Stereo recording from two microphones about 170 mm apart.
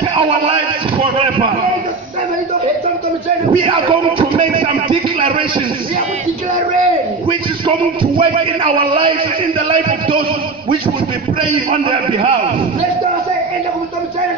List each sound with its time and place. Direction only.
0.1 s speech: 30° right (ahead or behind)
3.6 s speech: 30° right (ahead or behind)
7.2 s music: 30° right (ahead or behind)
9.7 s a man's voice: 30° right (ahead or behind)
11.8 s a man's voice: 30° right (ahead or behind)